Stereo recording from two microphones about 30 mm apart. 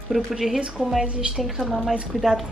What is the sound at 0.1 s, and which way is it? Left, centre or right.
Speech, right.